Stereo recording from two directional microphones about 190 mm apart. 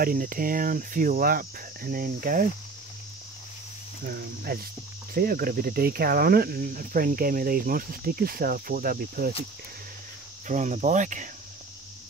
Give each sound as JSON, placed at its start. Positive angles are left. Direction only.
{"t": 0.0, "sound": "speech", "side_deg": -50}
{"t": 4.0, "sound": "speech", "side_deg": -55}
{"t": 10.5, "sound": "cricket", "side_deg": -40}